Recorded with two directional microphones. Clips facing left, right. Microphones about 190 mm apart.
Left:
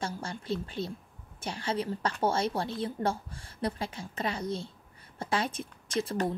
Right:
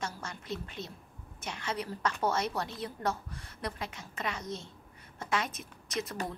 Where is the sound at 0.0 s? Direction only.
30° left (ahead or behind).